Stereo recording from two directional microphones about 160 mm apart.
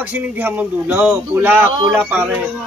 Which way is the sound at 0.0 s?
10° right (ahead or behind).